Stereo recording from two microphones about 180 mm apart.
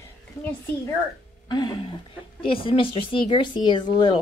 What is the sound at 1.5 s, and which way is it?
Speech, 25° left (ahead or behind).